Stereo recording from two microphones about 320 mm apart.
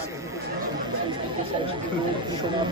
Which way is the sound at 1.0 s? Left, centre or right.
Centre.